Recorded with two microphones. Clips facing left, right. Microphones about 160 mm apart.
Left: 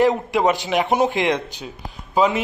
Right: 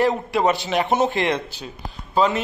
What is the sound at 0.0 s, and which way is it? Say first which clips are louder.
A man's voice: left 2 dB; 15° left (ahead or behind).